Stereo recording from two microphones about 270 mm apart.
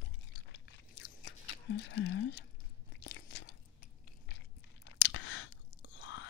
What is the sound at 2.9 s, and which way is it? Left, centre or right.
Crunch, left.